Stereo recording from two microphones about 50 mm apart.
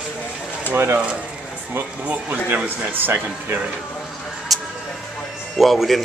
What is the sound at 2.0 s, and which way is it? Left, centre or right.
Speech, right.